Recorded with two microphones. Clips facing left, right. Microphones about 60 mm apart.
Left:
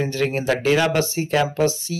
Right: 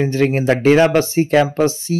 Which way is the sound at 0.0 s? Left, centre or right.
Right.